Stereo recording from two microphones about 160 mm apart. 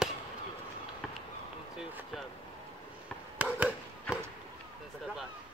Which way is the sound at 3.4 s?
10° right (ahead or behind).